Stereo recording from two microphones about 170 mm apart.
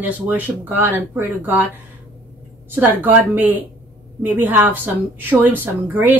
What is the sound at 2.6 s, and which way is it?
A woman's voice, 10° right (ahead or behind).